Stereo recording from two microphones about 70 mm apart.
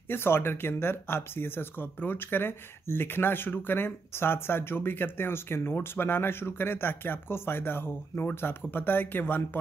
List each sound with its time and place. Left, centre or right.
0.1 s speech: left